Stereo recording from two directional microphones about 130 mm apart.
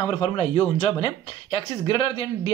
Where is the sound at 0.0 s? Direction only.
45° left (ahead or behind).